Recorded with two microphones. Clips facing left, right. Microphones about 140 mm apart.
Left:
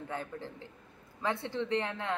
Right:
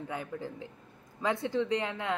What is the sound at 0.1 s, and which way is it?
Speech, 15° right (ahead or behind).